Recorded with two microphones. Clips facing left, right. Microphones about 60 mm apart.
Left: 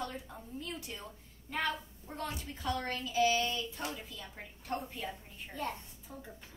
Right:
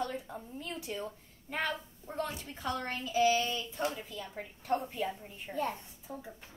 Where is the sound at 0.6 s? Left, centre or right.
Right.